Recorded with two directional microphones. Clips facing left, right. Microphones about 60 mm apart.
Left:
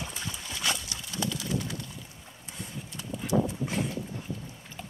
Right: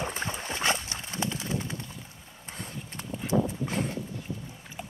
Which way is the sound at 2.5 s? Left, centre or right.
Right.